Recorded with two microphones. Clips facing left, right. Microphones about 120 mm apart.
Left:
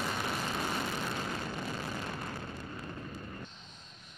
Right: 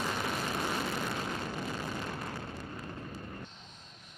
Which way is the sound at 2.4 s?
25° right (ahead or behind).